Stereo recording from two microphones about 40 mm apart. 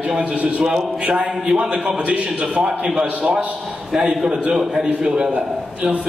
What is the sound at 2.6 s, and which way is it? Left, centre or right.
A man's voice, centre.